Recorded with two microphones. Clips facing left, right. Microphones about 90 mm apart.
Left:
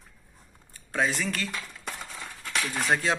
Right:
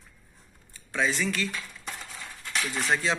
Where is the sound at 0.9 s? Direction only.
45° left (ahead or behind).